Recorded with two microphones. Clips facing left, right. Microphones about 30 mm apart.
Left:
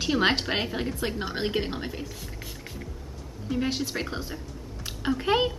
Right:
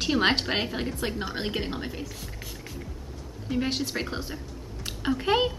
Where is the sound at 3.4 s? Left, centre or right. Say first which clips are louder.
Even; centre.